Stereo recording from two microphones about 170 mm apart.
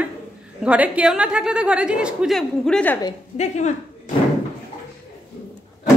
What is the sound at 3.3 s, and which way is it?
Speech, 40° left (ahead or behind).